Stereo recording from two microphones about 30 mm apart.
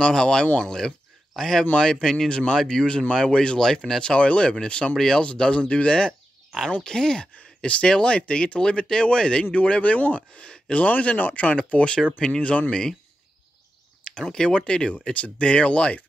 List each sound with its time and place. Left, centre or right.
0.0 s speech: left
3.5 s speech: centre
4.0 s speech: left
4.9 s speech: centre
5.6 s speech: left
6.8 s speech: left
7.6 s speech: left
11.1 s speech: left
11.4 s speech: left
14.2 s speech: left
15.1 s speech: left